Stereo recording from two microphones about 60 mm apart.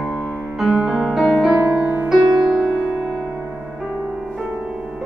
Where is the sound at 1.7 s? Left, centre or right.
Centre.